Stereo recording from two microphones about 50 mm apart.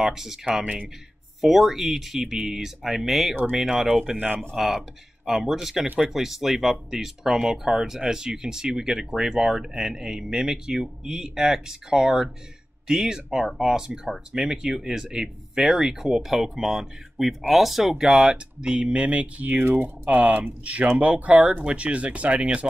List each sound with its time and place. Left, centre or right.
0.0 s speech: centre
1.4 s speech: centre; by 20.5 s right
21.0 s speech: right